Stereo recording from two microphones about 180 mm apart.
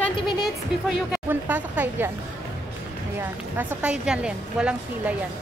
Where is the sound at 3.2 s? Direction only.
10° right (ahead or behind).